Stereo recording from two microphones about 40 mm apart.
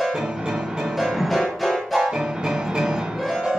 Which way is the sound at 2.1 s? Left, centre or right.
Centre.